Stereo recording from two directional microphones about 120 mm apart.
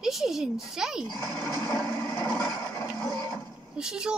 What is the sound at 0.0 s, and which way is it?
Speech, 5° right (ahead or behind).